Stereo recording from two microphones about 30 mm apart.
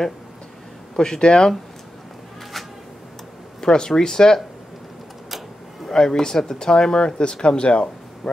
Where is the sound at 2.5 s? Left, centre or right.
Centre.